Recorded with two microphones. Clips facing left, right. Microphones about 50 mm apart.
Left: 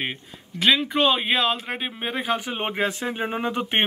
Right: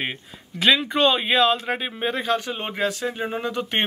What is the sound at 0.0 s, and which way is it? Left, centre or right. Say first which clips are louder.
Speech: right 1 dB; centre.